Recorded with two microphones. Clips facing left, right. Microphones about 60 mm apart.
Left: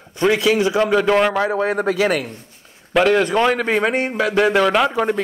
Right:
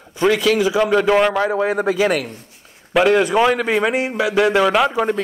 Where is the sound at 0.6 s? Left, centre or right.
Centre.